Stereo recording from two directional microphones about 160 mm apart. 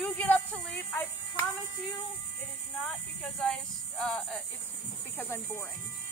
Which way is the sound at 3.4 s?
5° left (ahead or behind).